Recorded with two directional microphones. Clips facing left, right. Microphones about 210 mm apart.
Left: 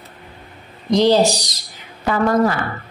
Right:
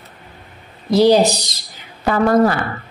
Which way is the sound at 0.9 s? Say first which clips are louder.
Right 2 dB; 10° right (ahead or behind).